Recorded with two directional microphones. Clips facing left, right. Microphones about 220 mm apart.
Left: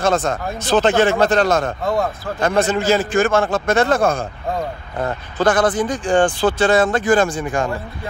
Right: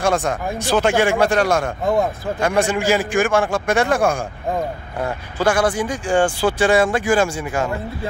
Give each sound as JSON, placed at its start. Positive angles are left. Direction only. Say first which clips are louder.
{"t": 0.0, "sound": "a man's voice", "louder": "left 1 dB", "side_deg": -15}